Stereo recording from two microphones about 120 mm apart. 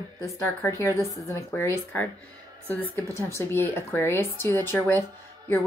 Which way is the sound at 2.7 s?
15° left (ahead or behind).